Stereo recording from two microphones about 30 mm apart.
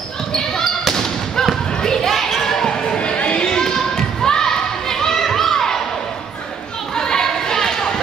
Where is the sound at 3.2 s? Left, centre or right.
Left; by 5.2 s centre.